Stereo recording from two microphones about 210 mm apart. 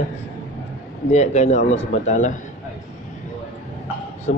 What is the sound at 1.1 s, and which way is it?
A man's voice, 30° left (ahead or behind).